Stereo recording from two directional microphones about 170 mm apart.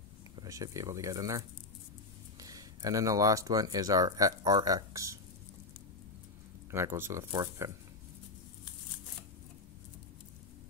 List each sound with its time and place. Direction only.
0.4 s speech: 20° right (ahead or behind)
2.4 s speech: 20° right (ahead or behind)
6.7 s speech: 15° right (ahead or behind)